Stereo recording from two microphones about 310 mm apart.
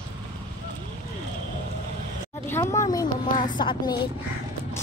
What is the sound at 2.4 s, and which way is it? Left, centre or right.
Speech, centre.